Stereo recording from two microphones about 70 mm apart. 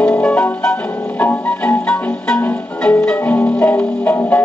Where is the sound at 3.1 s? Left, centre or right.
Left.